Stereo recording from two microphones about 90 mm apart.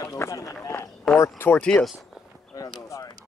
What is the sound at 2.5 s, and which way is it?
Speech, 40° left (ahead or behind).